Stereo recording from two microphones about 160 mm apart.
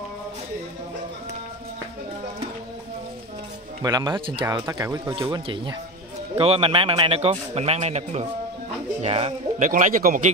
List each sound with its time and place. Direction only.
3.8 s a man's voice: 25° right (ahead or behind); by 9.3 s 40° right (ahead or behind)
9.6 s a man's voice: 55° right (ahead or behind)